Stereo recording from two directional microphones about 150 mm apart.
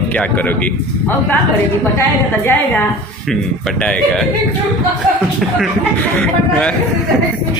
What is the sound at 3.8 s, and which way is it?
Speech, 10° left (ahead or behind).